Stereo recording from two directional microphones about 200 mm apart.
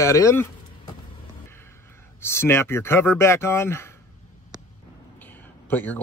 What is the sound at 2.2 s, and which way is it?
Speech, 15° left (ahead or behind).